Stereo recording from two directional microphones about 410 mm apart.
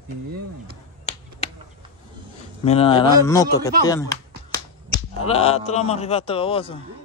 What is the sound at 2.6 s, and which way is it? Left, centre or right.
A man's voice, centre.